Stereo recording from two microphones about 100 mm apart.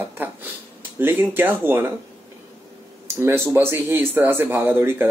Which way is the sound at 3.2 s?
25° right (ahead or behind).